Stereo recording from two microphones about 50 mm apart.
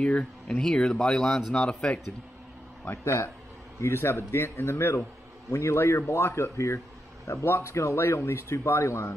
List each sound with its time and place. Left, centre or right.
0.0 s speech: left
2.9 s speech: left
3.8 s a man's voice: left
5.5 s a man's voice: left
5.8 s a man's voice: left